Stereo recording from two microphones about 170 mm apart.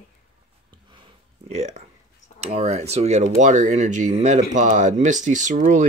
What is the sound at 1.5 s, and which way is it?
Speech, 40° right (ahead or behind).